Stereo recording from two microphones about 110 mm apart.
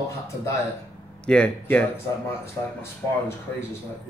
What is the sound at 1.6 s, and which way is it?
Speech, 20° left (ahead or behind).